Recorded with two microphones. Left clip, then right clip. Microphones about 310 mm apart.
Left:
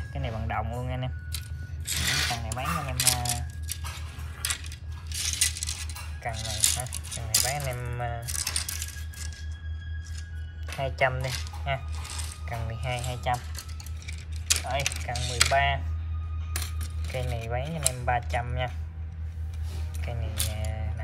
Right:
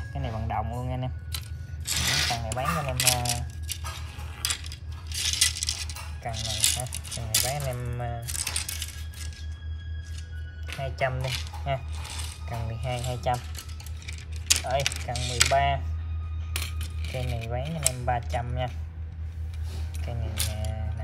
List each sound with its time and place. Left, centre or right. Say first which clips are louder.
0.1 s music: right 1 dB; centre
1.9 s a sound: right 2 dB; centre
2.7 s speech: right 1 dB; centre
5.2 s coin: right 4 dB; centre
10.7 s speech: left 3 dB; centre
12.5 s speech: even; centre
13.4 s keys jangling: even; centre
15.0 s speech: even; centre
15.2 s speech: right 1 dB; centre
16.5 s coin: right 3 dB; centre
20.0 s music: right 1 dB; centre